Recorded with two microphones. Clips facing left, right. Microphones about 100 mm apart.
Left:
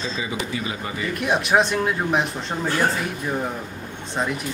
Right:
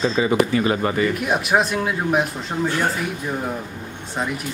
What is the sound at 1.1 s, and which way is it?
Speech, centre (ahead or behind).